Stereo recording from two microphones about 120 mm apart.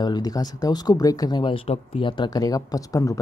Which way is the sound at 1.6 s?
50° left (ahead or behind).